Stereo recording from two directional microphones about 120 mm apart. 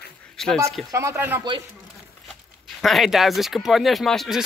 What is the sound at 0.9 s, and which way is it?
Speech, 20° right (ahead or behind).